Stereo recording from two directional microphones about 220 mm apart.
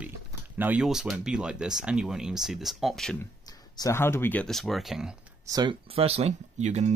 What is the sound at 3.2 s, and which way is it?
Speech, 15° left (ahead or behind).